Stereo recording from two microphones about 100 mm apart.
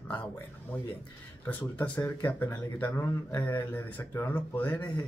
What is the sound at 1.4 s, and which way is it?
Speech, 15° left (ahead or behind).